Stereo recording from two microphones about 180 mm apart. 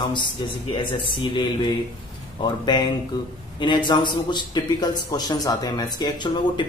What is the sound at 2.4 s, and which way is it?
A man's voice, 25° left (ahead or behind).